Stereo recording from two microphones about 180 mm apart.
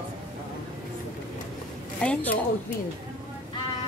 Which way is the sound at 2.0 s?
5° left (ahead or behind).